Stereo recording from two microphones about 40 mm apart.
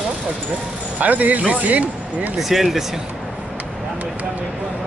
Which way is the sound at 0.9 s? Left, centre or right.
Right.